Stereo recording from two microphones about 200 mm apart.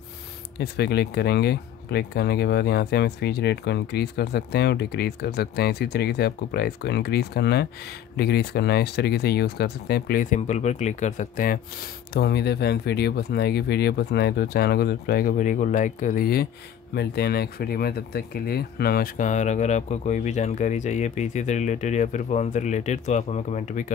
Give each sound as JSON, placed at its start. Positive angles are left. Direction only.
{"t": 0.6, "sound": "speech", "side_deg": 55}